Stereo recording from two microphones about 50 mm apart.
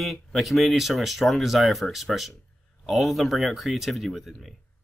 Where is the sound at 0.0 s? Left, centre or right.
Centre.